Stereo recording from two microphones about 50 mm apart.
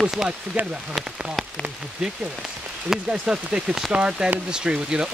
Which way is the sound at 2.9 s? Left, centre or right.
Centre.